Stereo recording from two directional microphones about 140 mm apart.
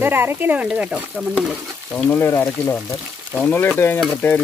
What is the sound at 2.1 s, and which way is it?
Speech, 15° left (ahead or behind).